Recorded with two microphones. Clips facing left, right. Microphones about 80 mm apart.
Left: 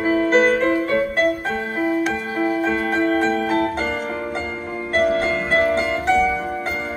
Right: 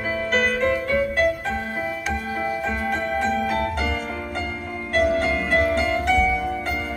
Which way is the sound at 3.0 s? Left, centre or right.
Left.